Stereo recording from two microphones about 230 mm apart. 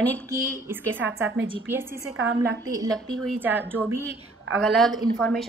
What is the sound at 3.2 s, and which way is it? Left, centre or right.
A woman's voice, centre.